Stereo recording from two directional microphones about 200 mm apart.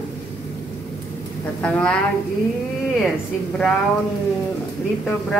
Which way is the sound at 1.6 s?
5° left (ahead or behind).